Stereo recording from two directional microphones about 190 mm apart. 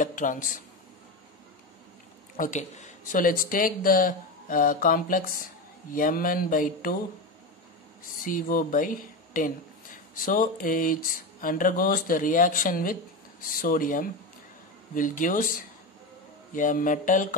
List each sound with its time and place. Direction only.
0.0 s speech: 45° left (ahead or behind)
2.3 s speech: 40° left (ahead or behind)
8.2 s speech: 45° left (ahead or behind)
16.5 s speech: 45° left (ahead or behind)